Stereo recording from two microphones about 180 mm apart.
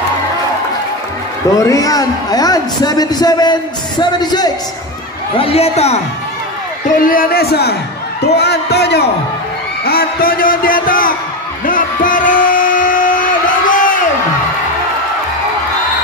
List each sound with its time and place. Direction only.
1.6 s a man's voice: 20° left (ahead or behind); by 5.9 s 35° left (ahead or behind)
7.0 s a man's voice: 50° left (ahead or behind)
11.6 s a sound: 50° left (ahead or behind)